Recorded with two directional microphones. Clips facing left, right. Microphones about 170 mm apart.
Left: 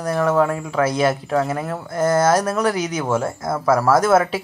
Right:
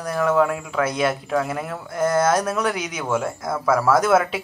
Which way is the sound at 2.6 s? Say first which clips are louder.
Left 4 dB; 30° left (ahead or behind).